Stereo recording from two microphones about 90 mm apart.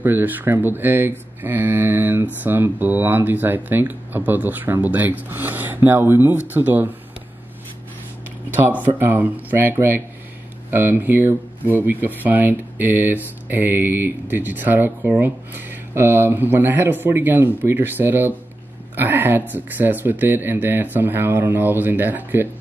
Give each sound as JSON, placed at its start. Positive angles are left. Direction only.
{"t": 0.0, "sound": "speech", "side_deg": -20}
{"t": 8.8, "sound": "speech", "side_deg": -20}